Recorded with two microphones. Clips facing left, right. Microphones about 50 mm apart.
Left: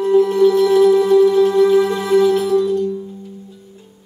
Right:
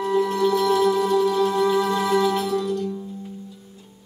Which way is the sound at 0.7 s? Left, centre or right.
Centre.